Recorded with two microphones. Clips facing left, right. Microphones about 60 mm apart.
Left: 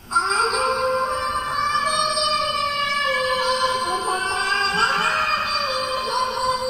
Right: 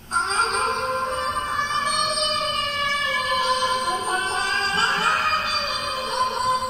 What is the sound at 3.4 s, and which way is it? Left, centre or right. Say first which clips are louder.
Female singing: left 1 dB; left.